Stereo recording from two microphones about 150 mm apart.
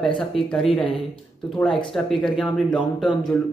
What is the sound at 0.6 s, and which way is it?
Speech, 35° left (ahead or behind).